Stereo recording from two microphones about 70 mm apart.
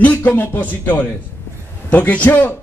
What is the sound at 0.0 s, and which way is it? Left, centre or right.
A man's voice, left.